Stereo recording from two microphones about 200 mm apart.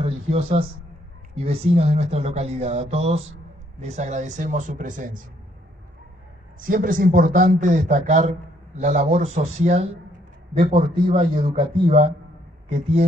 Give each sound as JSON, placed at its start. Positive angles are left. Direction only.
{"t": 0.0, "sound": "a man's voice", "side_deg": -30}
{"t": 6.6, "sound": "a man's voice", "side_deg": -45}